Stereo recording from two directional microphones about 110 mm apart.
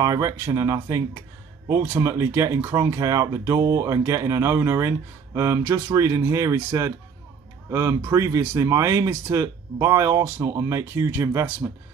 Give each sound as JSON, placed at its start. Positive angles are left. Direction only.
{"t": 0.0, "sound": "speech", "side_deg": -30}
{"t": 5.6, "sound": "speech", "side_deg": -15}
{"t": 5.9, "sound": "speech", "side_deg": -25}